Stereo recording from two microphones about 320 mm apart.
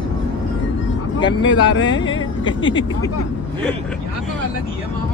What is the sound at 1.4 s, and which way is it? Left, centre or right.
Speech, left.